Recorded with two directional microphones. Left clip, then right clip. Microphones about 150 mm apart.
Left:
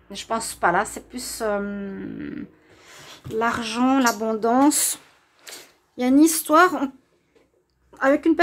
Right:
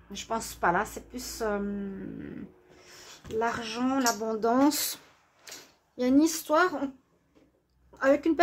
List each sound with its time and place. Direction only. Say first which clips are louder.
0.1 s a woman's voice: left 6 dB; 20° left (ahead or behind)
3.3 s speech: left 7 dB; 35° left (ahead or behind)
4.3 s speech: left 5 dB; 15° left (ahead or behind)
5.9 s speech: left 7 dB; 25° left (ahead or behind); by 6.9 s 50° left (ahead or behind)
7.9 s a woman's voice: left 5 dB; 15° left (ahead or behind)